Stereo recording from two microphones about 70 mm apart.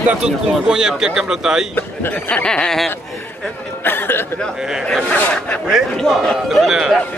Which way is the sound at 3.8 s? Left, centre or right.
Left.